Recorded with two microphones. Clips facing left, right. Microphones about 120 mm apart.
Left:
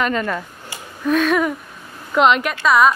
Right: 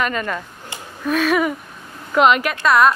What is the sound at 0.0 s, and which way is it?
Speech, 25° left (ahead or behind).